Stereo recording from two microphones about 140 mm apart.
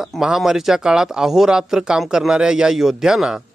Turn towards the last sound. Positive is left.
turn(degrees=-5)  # may be behind; listen again after turning